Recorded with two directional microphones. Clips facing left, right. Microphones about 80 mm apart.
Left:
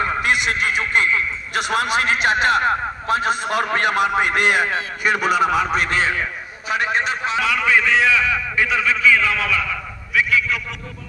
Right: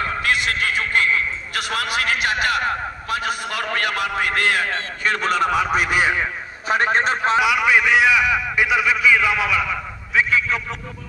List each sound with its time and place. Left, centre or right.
0.0 s a man's voice: left; by 6.2 s centre
6.7 s a man's voice: right
7.3 s a man's voice: centre